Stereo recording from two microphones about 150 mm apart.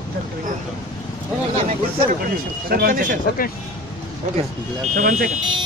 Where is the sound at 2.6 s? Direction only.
75° right (ahead or behind).